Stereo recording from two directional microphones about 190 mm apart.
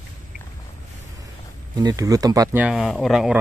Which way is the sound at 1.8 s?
20° right (ahead or behind).